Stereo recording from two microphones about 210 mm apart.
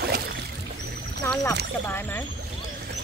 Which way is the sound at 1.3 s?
15° left (ahead or behind).